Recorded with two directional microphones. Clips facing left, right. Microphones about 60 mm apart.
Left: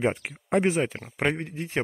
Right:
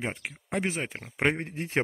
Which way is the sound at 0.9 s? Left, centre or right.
Centre.